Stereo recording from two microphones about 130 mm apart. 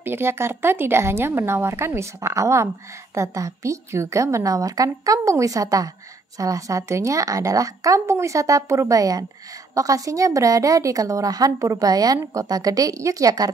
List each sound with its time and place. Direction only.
0.0 s a woman's voice: 15° right (ahead or behind)